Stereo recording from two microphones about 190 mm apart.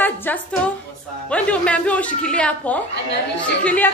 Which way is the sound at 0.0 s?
10° left (ahead or behind).